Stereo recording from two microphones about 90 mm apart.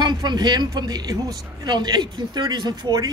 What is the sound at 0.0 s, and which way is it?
A woman's voice, 55° right (ahead or behind).